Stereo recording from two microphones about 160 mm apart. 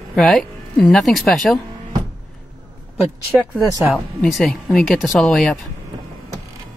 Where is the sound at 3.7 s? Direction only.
15° right (ahead or behind).